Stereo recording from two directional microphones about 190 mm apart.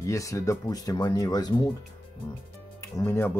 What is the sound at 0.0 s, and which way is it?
Speech, 15° left (ahead or behind).